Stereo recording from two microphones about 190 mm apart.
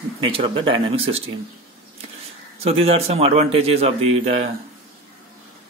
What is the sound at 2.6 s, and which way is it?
A man's voice, 30° right (ahead or behind).